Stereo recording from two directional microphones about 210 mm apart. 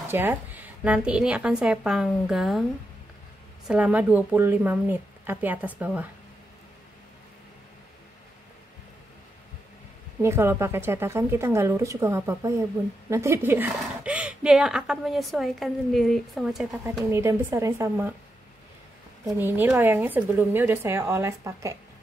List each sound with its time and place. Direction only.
0.0 s a woman's voice: 10° right (ahead or behind)
3.6 s speech: 5° right (ahead or behind)
10.2 s a woman's voice: 10° right (ahead or behind)
17.1 s speech: 15° right (ahead or behind)
19.2 s speech: 10° right (ahead or behind)